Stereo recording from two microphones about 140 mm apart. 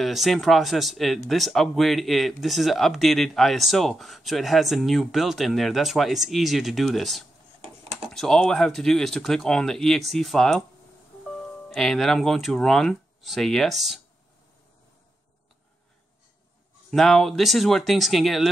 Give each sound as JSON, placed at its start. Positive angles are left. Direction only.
{"t": 0.0, "sound": "speech", "side_deg": 0}
{"t": 7.6, "sound": "a sound", "side_deg": -50}
{"t": 8.1, "sound": "speech", "side_deg": 5}
{"t": 11.7, "sound": "speech", "side_deg": 0}
{"t": 16.9, "sound": "speech", "side_deg": 0}